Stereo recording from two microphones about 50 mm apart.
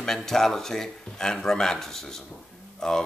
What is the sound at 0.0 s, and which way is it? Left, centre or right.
Speech, centre.